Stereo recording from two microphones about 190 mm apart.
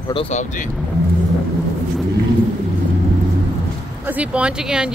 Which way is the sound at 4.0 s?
10° right (ahead or behind).